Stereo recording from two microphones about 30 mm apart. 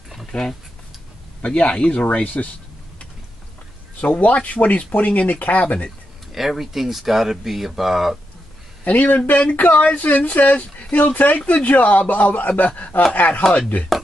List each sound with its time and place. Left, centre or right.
0.3 s speech: centre
1.4 s speech: left
2.2 s speech: left
4.0 s speech: left
6.3 s speech: centre
8.8 s speech: left